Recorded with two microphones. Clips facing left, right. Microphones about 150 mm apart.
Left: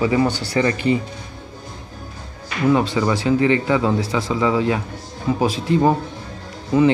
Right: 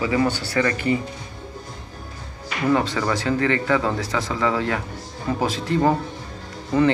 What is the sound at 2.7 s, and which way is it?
Speech, 15° left (ahead or behind).